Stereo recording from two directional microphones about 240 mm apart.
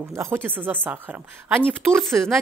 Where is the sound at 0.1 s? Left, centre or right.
Centre.